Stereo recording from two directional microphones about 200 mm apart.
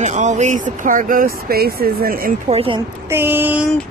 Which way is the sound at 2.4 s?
30° right (ahead or behind).